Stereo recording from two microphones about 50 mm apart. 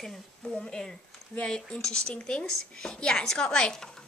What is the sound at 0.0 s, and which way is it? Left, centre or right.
A woman's voice, centre.